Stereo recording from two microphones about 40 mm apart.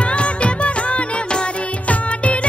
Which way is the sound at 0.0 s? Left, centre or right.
Left.